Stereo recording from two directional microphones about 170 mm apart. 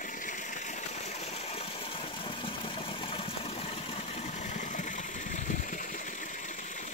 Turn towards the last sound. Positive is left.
turn(degrees=50)  # may be behind; listen again after turning